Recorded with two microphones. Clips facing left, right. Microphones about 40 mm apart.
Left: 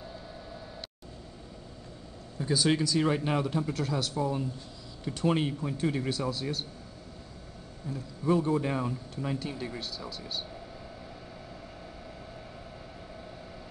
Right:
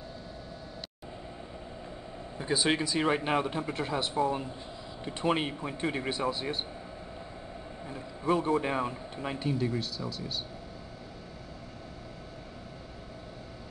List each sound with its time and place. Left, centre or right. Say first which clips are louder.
2.3 s speech: left 1 dB; right
7.8 s speech: left 2 dB; right
9.5 s speech: right 6 dB; centre